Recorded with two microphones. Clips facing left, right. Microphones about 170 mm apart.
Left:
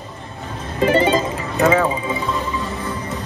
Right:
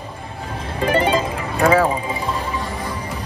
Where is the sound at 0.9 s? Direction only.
10° right (ahead or behind).